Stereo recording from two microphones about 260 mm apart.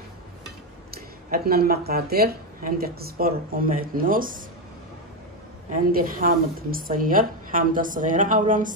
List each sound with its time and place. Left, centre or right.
1.3 s speech: right
5.7 s speech: right